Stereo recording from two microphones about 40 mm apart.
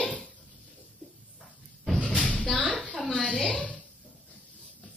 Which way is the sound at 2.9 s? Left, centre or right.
Left.